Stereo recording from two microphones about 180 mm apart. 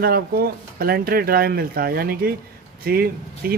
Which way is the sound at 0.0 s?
55° right (ahead or behind).